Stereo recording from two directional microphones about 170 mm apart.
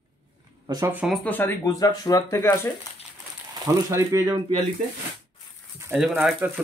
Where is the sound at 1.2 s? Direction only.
10° left (ahead or behind).